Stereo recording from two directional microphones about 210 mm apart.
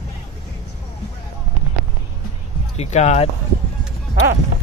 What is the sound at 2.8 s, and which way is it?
Speech, 35° left (ahead or behind).